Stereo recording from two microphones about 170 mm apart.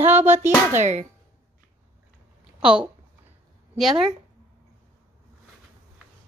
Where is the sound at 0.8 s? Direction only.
45° right (ahead or behind).